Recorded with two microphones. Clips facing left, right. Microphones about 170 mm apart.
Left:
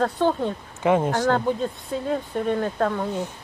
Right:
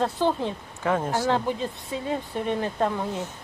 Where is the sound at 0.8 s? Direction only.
15° left (ahead or behind).